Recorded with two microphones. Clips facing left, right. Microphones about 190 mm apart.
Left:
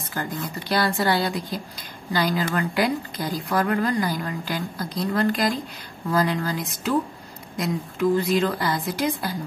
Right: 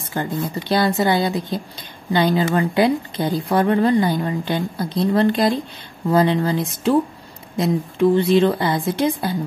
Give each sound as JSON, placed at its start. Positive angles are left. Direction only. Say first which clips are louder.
{"t": 0.0, "sound": "a woman's voice", "louder": "right 6 dB", "side_deg": -25}